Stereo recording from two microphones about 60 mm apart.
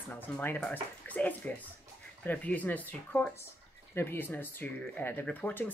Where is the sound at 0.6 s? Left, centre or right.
Left.